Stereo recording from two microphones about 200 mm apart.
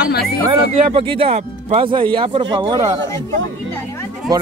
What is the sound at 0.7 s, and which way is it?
Speech, 30° right (ahead or behind).